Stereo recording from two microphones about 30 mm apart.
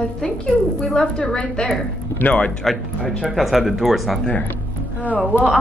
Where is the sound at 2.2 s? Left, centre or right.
Left.